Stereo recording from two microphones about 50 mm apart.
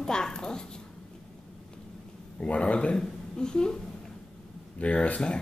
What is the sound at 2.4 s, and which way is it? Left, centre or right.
A woman's voice, left.